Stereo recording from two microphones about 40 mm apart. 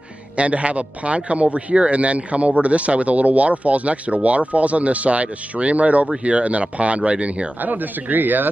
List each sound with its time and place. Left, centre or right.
0.4 s speech: right
7.6 s speech: right